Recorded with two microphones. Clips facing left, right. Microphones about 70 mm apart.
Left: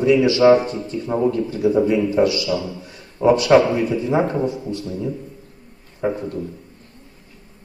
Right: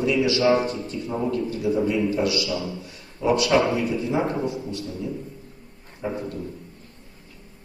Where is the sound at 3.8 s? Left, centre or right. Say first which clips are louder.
Left 5 dB; left.